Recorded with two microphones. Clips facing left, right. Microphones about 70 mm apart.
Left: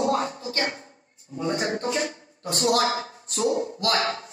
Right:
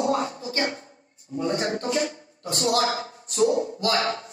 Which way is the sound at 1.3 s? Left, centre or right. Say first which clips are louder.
Right 1 dB; left.